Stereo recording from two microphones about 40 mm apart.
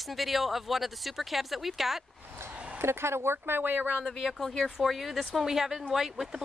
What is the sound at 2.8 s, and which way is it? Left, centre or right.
Speech, right.